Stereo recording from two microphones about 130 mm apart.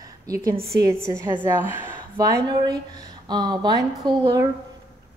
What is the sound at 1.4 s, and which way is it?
Speech, 15° right (ahead or behind).